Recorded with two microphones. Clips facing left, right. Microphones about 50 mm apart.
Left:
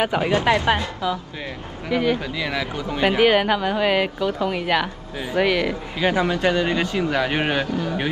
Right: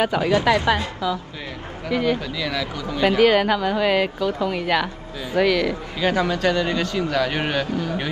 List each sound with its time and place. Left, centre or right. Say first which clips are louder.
0.0 s a man's voice: right 1 dB; left
1.9 s speech: even; centre
2.3 s a man's voice: left 1 dB; left